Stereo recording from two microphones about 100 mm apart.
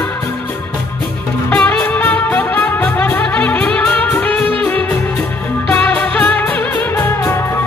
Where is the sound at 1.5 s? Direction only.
15° left (ahead or behind).